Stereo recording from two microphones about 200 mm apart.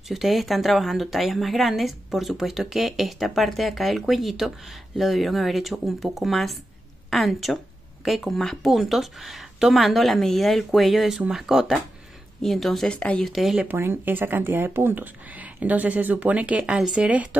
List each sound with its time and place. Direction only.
0.1 s speech: centre (ahead or behind)